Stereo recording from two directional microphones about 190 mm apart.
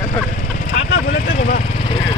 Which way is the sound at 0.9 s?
50° left (ahead or behind).